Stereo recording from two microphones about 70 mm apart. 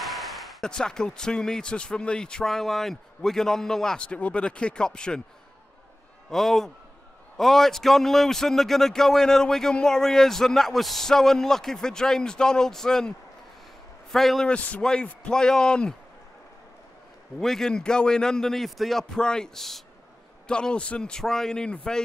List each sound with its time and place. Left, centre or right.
0.0 s a sound: centre
0.7 s speech: centre
6.3 s a man's voice: centre
14.1 s a man's voice: centre
14.5 s a man's voice: centre
17.4 s speech: centre